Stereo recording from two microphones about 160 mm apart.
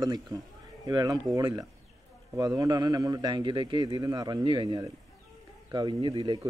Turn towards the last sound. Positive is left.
turn(degrees=-30)  # may be behind; listen again after turning